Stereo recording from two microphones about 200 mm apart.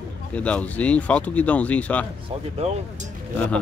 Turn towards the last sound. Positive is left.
turn(degrees=5)  # may be behind; listen again after turning